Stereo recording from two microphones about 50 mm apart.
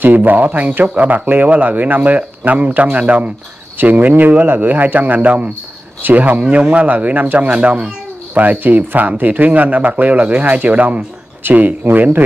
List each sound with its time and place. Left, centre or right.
0.0 s speech: right
11.4 s speech: right